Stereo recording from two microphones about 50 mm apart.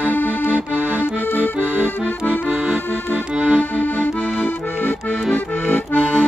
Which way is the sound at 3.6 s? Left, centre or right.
Left.